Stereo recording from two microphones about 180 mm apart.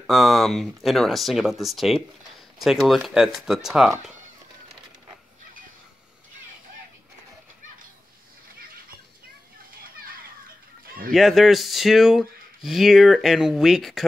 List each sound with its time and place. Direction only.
0.0 s speech: centre (ahead or behind)
11.1 s speech: centre (ahead or behind)